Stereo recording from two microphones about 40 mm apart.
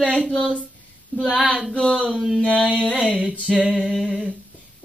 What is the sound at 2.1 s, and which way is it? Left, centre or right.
Female singing, centre.